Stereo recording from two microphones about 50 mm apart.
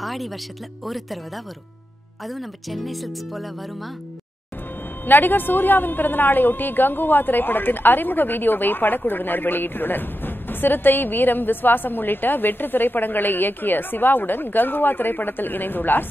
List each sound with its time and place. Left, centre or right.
0.0 s speech: centre
5.0 s a woman's voice: left